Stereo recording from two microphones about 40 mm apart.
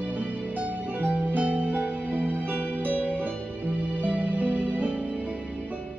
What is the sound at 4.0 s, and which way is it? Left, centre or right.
Music, right.